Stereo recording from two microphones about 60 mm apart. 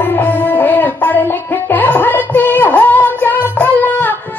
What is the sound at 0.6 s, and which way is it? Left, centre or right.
Music, left.